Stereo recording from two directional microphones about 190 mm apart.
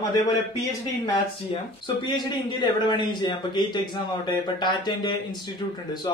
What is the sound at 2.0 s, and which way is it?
A man's voice, 25° left (ahead or behind).